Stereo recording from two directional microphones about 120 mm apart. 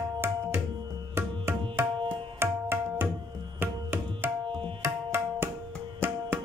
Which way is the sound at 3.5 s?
20° right (ahead or behind).